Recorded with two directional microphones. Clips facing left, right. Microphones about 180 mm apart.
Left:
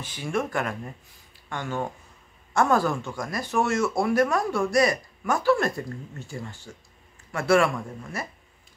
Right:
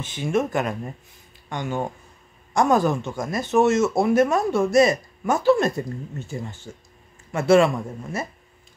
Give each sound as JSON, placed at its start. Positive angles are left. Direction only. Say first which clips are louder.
{"t": 0.0, "sound": "speech", "louder": "right 5 dB", "side_deg": -20}